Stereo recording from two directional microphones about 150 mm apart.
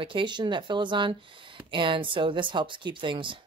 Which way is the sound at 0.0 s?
35° right (ahead or behind).